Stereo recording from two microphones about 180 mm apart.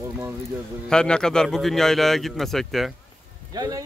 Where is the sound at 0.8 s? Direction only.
5° left (ahead or behind).